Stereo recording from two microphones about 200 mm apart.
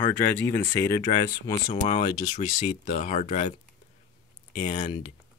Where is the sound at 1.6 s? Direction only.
30° left (ahead or behind).